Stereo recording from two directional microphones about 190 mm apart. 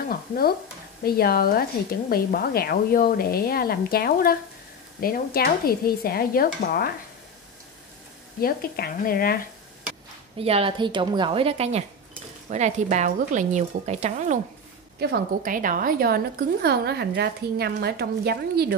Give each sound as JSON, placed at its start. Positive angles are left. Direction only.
{"t": 1.0, "sound": "a woman's voice", "side_deg": 55}
{"t": 8.4, "sound": "a woman's voice", "side_deg": 50}
{"t": 10.3, "sound": "a woman's voice", "side_deg": -30}
{"t": 15.0, "sound": "a woman's voice", "side_deg": -50}